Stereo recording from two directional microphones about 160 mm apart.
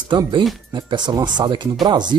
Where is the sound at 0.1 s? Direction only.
30° right (ahead or behind).